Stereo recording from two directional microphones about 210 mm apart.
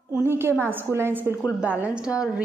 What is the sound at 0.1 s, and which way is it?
A woman's voice, 10° right (ahead or behind).